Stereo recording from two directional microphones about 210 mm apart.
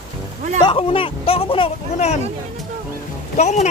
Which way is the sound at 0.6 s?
25° left (ahead or behind).